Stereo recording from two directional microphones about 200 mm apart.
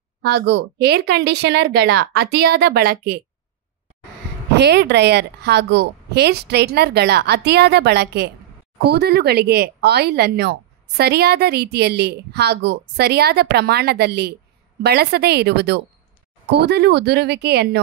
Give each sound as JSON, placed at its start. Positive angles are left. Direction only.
{"t": 0.2, "sound": "a woman's voice", "side_deg": -60}
{"t": 4.6, "sound": "a woman's voice", "side_deg": -55}